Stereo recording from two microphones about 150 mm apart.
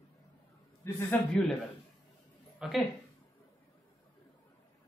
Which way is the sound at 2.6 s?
Centre (ahead or behind).